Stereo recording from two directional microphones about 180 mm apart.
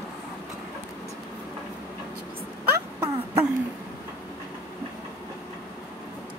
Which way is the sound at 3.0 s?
15° right (ahead or behind).